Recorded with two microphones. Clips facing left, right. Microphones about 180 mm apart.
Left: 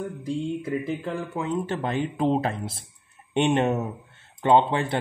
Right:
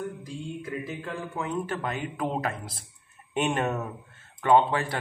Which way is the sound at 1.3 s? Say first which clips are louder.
Left 2 dB; 25° left (ahead or behind).